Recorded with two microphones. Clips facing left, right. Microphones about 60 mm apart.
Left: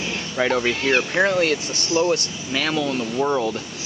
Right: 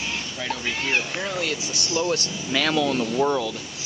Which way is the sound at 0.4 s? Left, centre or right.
Left.